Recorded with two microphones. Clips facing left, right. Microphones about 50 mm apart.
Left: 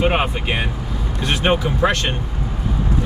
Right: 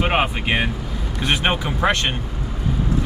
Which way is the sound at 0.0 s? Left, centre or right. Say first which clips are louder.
Left 1 dB; centre.